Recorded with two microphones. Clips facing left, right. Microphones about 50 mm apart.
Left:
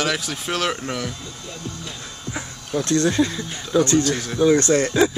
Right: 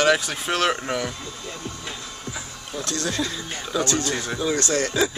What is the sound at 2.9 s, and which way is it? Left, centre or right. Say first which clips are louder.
Speech: left 7 dB; left.